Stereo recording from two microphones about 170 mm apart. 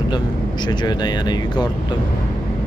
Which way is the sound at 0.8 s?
25° left (ahead or behind).